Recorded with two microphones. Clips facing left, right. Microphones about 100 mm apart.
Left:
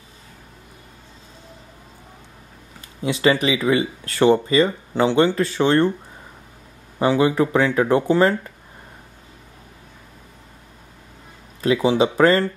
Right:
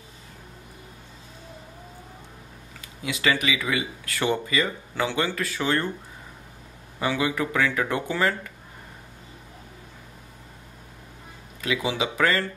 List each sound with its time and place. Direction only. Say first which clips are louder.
3.0 s speech: left 7 dB; 30° left (ahead or behind)
7.0 s speech: left 8 dB; 30° left (ahead or behind)
11.6 s speech: left 9 dB; 35° left (ahead or behind)